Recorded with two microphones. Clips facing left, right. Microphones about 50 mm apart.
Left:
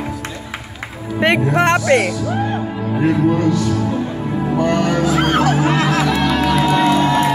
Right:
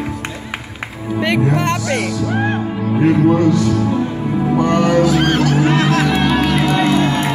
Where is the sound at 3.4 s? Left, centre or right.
Right.